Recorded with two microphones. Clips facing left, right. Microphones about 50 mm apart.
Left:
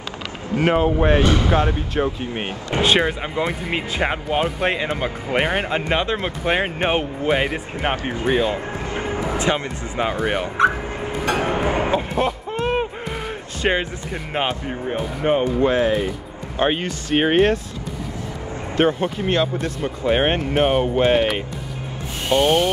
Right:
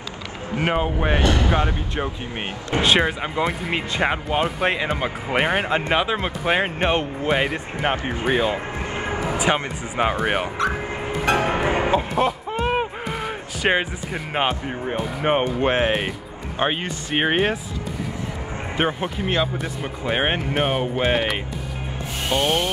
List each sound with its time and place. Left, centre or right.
0.7 s speech: centre
8.3 s speech: centre
8.8 s music: right
9.4 s speech: right
10.6 s speech: left
11.4 s a sound: right
11.9 s a sound: centre
14.1 s speech: centre
15.2 s speech: right
16.5 s speech: centre
18.8 s speech: centre